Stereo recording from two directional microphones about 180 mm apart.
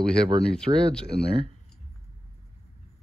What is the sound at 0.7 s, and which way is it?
Speech, 25° right (ahead or behind).